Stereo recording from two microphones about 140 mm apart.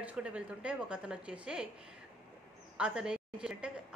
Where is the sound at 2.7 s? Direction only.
5° right (ahead or behind).